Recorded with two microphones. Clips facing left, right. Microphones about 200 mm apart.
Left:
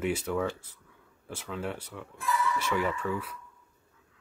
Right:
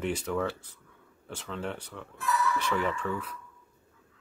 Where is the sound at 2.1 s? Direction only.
25° left (ahead or behind).